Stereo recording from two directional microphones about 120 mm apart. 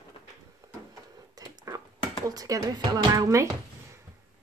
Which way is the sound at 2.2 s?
30° right (ahead or behind).